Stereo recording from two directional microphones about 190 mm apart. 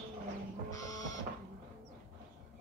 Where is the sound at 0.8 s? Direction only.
20° left (ahead or behind).